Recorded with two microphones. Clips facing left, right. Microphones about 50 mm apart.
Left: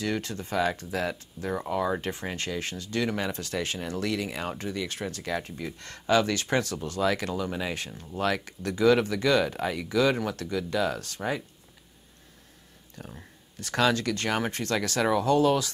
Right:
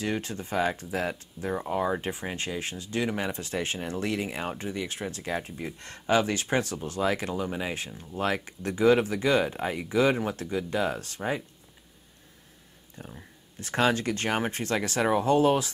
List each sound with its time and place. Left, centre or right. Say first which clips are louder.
0.0 s speech: even; right
13.0 s speech: even; centre